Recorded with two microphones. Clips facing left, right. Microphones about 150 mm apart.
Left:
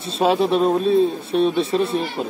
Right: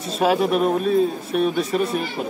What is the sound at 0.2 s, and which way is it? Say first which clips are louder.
A man's voice: left 1 dB; 30° left (ahead or behind).